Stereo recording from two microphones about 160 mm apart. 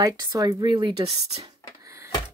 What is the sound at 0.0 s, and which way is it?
Speech, 25° right (ahead or behind).